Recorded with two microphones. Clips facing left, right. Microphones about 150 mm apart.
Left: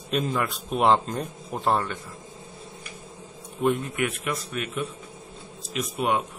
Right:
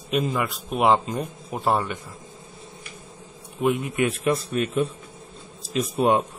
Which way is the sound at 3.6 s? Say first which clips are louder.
Right 1 dB; 5° right (ahead or behind).